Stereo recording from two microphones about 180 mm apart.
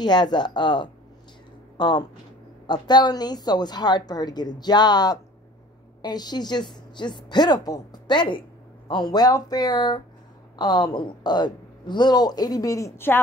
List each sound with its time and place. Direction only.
0.0 s speech: 25° left (ahead or behind)